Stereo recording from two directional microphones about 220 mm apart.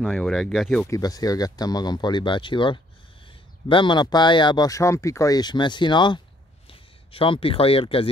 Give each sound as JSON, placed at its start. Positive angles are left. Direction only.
{"t": 0.0, "sound": "speech", "side_deg": 0}
{"t": 0.8, "sound": "a man's voice", "side_deg": 15}